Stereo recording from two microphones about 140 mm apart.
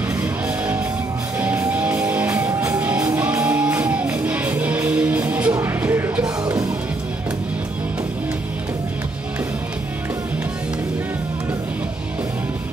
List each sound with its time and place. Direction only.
0.2 s music: 10° right (ahead or behind); by 6.7 s 25° right (ahead or behind)